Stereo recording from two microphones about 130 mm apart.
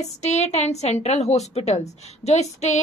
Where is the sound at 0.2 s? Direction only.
60° left (ahead or behind).